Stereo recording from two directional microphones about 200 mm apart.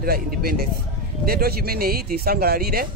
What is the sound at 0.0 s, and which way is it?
Speech, 50° right (ahead or behind).